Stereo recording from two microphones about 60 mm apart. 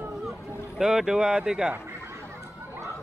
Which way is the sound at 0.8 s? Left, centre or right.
Centre.